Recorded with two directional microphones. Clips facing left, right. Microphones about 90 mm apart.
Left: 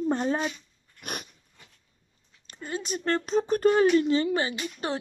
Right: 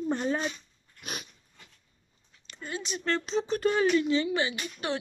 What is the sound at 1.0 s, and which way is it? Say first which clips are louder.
Dog: left 3 dB; 55° left (ahead or behind).